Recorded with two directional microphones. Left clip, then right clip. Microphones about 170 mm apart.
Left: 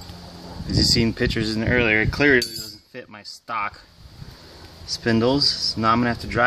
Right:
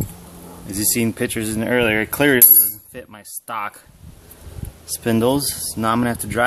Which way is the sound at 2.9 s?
10° right (ahead or behind).